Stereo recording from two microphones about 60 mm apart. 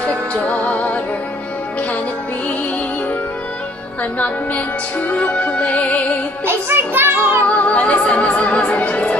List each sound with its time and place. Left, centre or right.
0.3 s music: left
5.1 s music: left
6.4 s music: right
7.4 s speech: left